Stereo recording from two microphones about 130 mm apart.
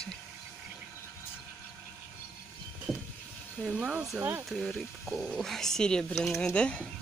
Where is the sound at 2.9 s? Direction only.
5° right (ahead or behind).